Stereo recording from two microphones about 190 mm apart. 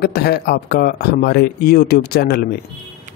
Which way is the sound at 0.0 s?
55° left (ahead or behind).